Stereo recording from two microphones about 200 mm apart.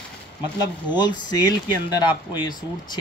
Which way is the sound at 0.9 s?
20° left (ahead or behind).